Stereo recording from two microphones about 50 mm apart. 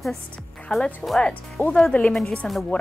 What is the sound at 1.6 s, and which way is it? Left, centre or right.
Speech, left.